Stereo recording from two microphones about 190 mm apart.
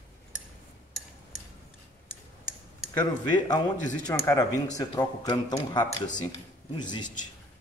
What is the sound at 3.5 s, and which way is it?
Speech, 20° left (ahead or behind).